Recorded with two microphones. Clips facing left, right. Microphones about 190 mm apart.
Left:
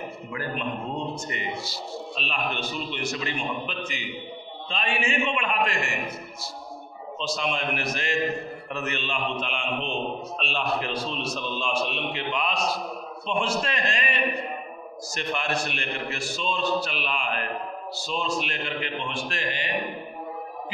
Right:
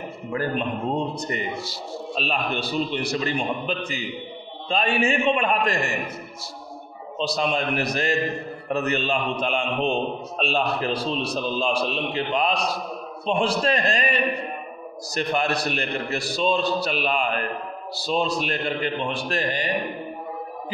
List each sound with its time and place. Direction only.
0.3 s a man's voice: 35° right (ahead or behind)
7.2 s a man's voice: 35° right (ahead or behind)